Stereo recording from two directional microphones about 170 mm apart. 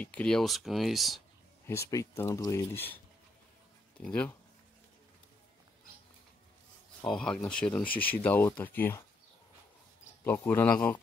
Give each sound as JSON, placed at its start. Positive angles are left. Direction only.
{"t": 0.0, "sound": "speech", "side_deg": 5}
{"t": 1.7, "sound": "speech", "side_deg": 20}
{"t": 4.0, "sound": "speech", "side_deg": 5}
{"t": 7.1, "sound": "speech", "side_deg": 5}
{"t": 10.2, "sound": "speech", "side_deg": 10}